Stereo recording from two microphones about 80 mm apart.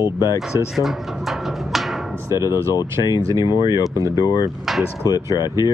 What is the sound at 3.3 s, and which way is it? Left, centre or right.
Speech, left.